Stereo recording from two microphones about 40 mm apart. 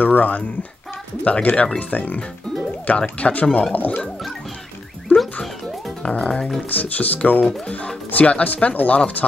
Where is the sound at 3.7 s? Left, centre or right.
Left.